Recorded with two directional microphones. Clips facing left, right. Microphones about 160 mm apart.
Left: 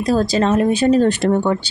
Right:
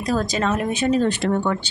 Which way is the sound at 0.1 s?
30° left (ahead or behind).